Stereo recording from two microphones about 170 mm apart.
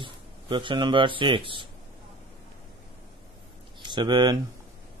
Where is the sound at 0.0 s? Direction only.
30° right (ahead or behind).